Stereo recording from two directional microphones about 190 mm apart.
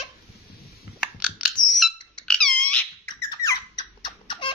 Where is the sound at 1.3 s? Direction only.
45° left (ahead or behind).